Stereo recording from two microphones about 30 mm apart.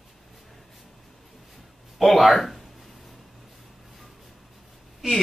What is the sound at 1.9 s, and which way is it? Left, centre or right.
Speech, centre.